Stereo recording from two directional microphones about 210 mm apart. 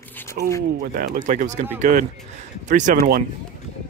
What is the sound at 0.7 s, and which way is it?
Speech, 40° right (ahead or behind).